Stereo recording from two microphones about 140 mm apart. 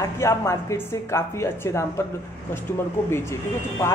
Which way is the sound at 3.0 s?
20° left (ahead or behind).